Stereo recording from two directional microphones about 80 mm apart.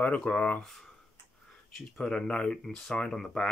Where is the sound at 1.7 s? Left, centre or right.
Centre.